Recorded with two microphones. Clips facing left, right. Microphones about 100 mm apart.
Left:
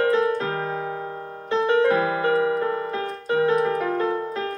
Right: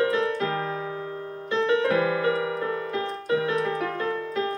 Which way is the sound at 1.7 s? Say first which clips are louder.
Left 4 dB; 30° left (ahead or behind).